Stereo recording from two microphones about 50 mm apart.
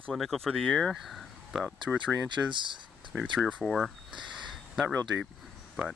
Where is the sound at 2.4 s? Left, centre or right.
Centre.